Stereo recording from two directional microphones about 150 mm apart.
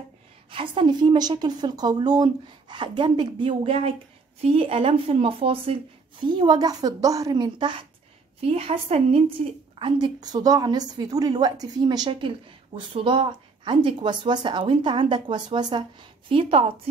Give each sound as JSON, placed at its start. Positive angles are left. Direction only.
{"t": 0.5, "sound": "a woman's voice", "side_deg": -35}
{"t": 9.8, "sound": "a woman's voice", "side_deg": -30}